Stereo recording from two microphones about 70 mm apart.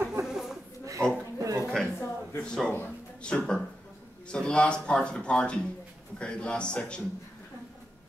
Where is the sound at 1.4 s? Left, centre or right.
Right.